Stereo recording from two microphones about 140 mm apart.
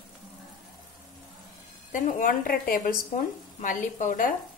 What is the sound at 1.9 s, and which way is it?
A woman's voice, 70° left (ahead or behind).